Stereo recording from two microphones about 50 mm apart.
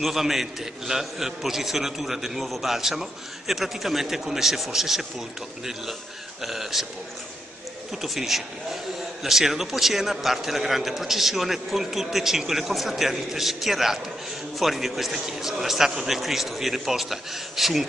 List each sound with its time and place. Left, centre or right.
0.0 s a man's voice: centre
6.4 s a man's voice: centre
7.9 s a man's voice: centre